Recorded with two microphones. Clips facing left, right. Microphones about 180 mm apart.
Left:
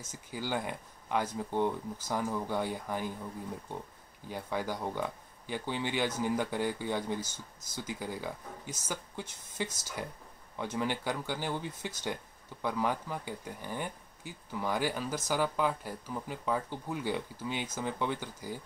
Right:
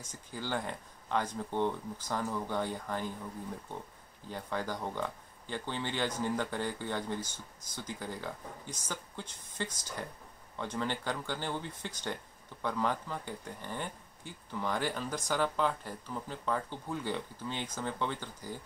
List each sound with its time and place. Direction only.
0.1 s speech: 10° left (ahead or behind)
4.3 s speech: 10° left (ahead or behind)